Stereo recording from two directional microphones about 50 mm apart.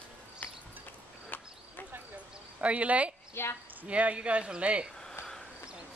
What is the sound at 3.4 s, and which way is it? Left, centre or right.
Speech, left.